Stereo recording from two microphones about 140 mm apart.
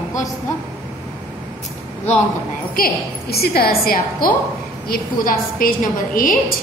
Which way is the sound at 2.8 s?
90° left.